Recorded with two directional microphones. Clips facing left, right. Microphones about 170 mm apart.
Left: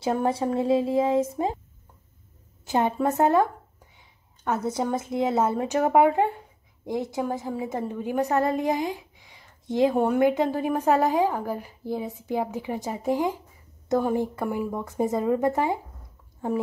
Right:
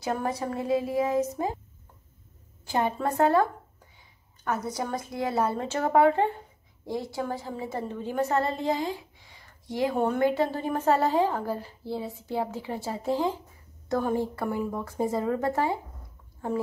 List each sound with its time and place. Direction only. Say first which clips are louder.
0.0 s a woman's voice: left 5 dB; 25° left (ahead or behind)
2.6 s a woman's voice: left 4 dB; 20° left (ahead or behind)
4.5 s a woman's voice: left 4 dB; 25° left (ahead or behind)